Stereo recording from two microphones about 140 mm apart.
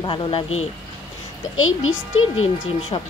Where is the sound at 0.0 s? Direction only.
35° left (ahead or behind).